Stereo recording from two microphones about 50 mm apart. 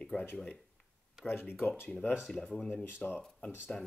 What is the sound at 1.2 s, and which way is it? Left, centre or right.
Speech, left.